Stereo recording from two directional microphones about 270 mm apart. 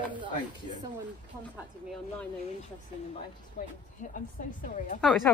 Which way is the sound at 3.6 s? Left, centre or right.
Left.